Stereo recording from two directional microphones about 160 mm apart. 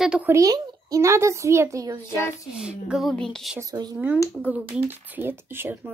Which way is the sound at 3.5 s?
20° right (ahead or behind).